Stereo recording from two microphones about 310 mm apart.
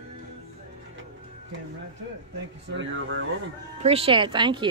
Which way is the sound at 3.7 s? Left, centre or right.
Centre.